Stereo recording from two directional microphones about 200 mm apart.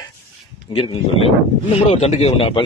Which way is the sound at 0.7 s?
30° left (ahead or behind).